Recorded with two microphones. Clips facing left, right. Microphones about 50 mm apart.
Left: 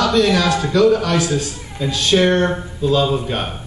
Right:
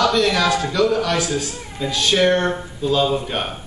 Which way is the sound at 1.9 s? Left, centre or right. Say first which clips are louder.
Left 2 dB; centre.